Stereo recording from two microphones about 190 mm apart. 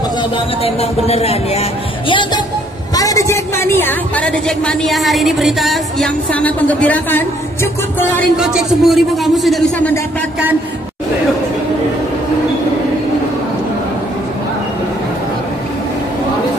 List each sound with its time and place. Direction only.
0.7 s a woman's voice: 30° left (ahead or behind); by 8.3 s 10° left (ahead or behind)
8.4 s a man's voice: centre (ahead or behind)